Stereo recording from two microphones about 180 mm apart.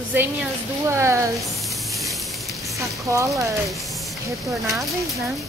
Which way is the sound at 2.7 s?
15° right (ahead or behind).